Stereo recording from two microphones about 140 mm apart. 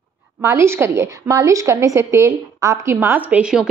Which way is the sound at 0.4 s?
20° right (ahead or behind).